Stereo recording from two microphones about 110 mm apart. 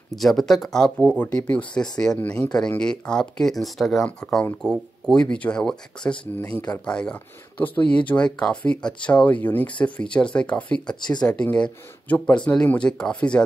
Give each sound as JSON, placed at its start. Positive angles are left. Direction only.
{"t": 0.1, "sound": "speech", "side_deg": 5}